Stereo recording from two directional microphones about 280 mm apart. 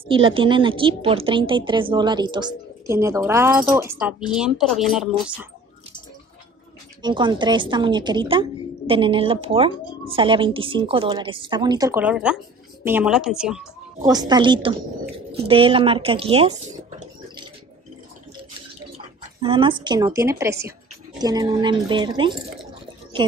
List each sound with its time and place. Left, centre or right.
0.1 s a woman's voice: centre
7.0 s a woman's voice: centre
14.0 s a woman's voice: centre
19.4 s a woman's voice: centre